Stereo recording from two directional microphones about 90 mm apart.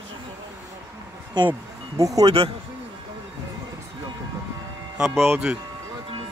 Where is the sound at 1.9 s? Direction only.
40° right (ahead or behind).